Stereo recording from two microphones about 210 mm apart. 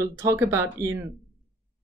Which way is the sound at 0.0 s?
10° right (ahead or behind).